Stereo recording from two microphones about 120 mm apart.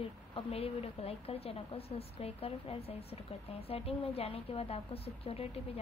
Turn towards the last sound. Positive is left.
turn(degrees=60)  # may be behind; listen again after turning